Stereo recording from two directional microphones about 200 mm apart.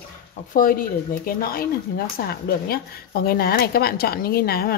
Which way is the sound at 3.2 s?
50° left (ahead or behind).